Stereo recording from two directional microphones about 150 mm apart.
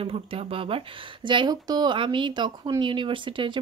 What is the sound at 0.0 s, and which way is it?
Speech, 40° right (ahead or behind).